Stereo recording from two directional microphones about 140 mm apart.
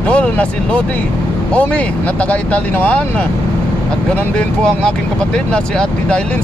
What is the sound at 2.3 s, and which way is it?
Speech, 10° left (ahead or behind).